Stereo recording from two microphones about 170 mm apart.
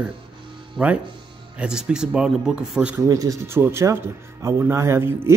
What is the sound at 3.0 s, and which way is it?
Speech, 20° right (ahead or behind).